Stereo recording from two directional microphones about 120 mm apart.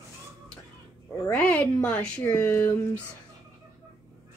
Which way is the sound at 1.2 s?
15° left (ahead or behind).